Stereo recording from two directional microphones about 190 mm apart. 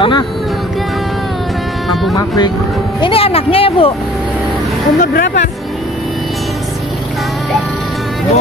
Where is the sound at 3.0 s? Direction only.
30° left (ahead or behind).